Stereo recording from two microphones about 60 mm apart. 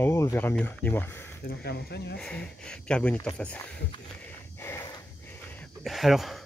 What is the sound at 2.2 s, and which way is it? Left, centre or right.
Speech, centre.